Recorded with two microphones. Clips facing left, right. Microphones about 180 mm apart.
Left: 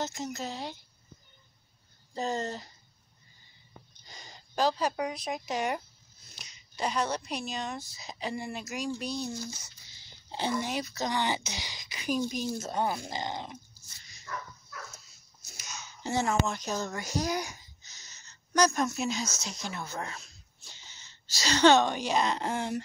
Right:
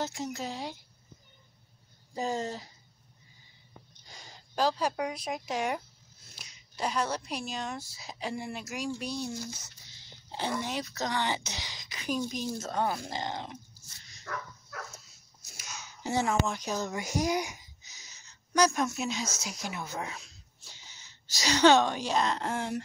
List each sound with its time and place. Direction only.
0.0 s speech: 10° right (ahead or behind)
2.1 s speech: 5° right (ahead or behind)
4.0 s speech: 5° right (ahead or behind)
6.4 s a sound: 5° right (ahead or behind)
7.2 s speech: 5° right (ahead or behind)
10.3 s speech: 20° left (ahead or behind); by 13.6 s 5° left (ahead or behind)
15.5 s a sound: 10° right (ahead or behind)
16.5 s speech: 10° right (ahead or behind)
17.0 s a sound: 20° right (ahead or behind); by 19.2 s centre (ahead or behind)
19.7 s speech: 5° right (ahead or behind)
20.6 s a sound: 10° right (ahead or behind)
21.7 s speech: centre (ahead or behind)